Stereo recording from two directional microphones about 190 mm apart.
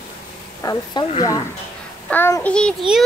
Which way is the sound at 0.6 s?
20° left (ahead or behind).